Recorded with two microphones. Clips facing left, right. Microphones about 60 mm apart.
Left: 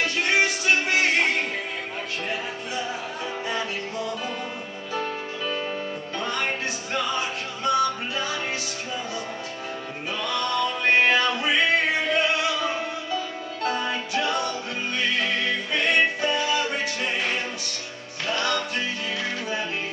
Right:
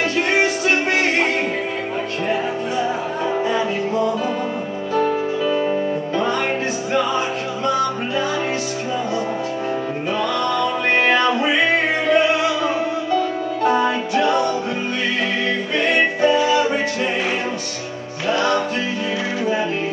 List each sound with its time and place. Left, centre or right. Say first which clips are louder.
0.3 s music: right 2 dB; centre
3.4 s music: right 9 dB; centre
10.4 s music: right 5 dB; centre
15.8 s music: right 6 dB; centre
18.2 s music: right 7 dB; centre